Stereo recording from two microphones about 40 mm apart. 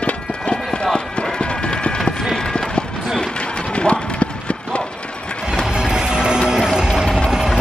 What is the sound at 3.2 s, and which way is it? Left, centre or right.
Clip-clop, left.